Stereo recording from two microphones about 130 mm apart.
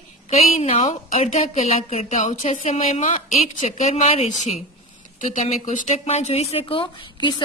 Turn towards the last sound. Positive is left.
turn(degrees=40)  # may be behind; listen again after turning